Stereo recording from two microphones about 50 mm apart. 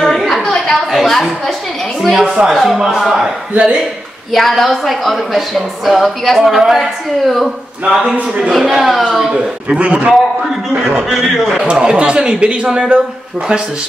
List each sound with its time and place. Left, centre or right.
0.0 s a sound: centre
0.7 s a sound: centre
2.0 s speech: centre
4.3 s speech: centre
7.8 s speech: centre
9.3 s a man's voice: right
11.1 s speech: centre
11.7 s speech: centre